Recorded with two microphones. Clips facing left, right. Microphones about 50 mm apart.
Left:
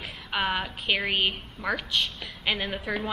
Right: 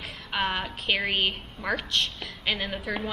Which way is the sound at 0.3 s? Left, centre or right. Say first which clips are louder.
Left 1 dB; centre.